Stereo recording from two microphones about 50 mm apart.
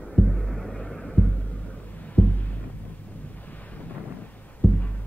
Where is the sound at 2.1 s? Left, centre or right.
Left.